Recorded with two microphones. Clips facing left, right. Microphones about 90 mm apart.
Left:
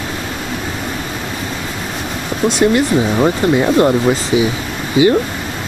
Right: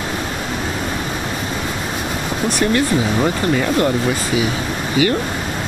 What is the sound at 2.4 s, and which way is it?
Speech, 20° left (ahead or behind).